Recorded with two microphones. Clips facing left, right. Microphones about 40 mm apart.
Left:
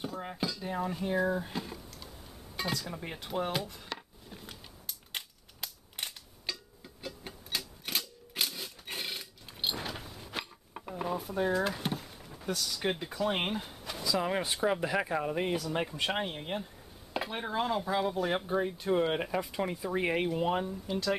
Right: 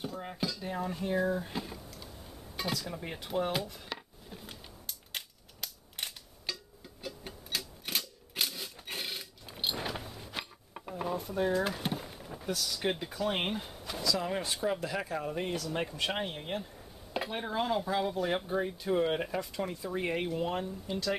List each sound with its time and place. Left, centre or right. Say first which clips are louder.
0.0 s speech: left 1 dB; centre
2.5 s dishes: left 1 dB; centre
12.4 s speech: even; centre
14.0 s speech: left 2 dB; centre